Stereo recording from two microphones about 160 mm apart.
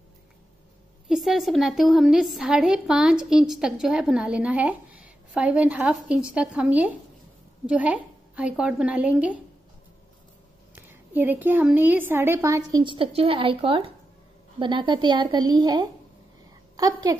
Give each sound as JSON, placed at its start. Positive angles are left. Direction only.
{"t": 1.0, "sound": "a woman's voice", "side_deg": 0}
{"t": 10.7, "sound": "a woman's voice", "side_deg": -10}